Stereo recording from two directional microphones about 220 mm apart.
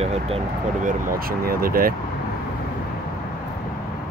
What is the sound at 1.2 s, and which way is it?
Speech, 40° right (ahead or behind).